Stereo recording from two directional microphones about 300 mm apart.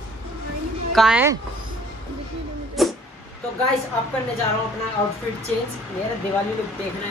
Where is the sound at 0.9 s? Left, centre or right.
Centre.